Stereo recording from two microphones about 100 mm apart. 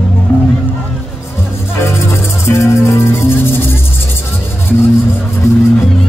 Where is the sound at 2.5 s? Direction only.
30° left (ahead or behind).